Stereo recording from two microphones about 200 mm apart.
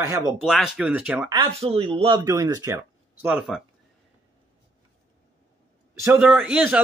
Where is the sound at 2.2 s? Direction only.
15° right (ahead or behind).